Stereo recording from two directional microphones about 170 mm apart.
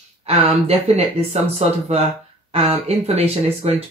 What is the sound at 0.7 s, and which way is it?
Speech, 40° right (ahead or behind).